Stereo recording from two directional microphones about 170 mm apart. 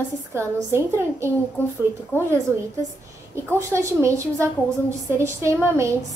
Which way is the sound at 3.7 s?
15° right (ahead or behind).